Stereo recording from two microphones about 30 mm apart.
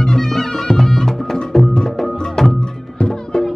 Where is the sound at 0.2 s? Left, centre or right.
Centre.